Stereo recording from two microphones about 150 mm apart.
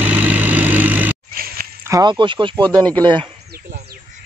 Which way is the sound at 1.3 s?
75° right (ahead or behind).